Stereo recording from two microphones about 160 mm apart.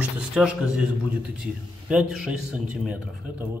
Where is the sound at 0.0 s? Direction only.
5° right (ahead or behind).